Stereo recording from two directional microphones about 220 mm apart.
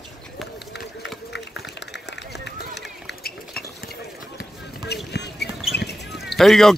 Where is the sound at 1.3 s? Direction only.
50° left (ahead or behind).